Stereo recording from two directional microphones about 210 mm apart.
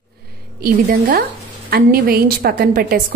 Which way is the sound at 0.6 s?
45° right (ahead or behind).